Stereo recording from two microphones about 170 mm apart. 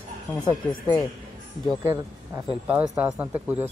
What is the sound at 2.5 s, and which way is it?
Speech, 10° right (ahead or behind).